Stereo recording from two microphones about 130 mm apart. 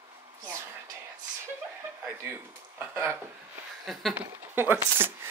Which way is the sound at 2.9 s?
20° right (ahead or behind).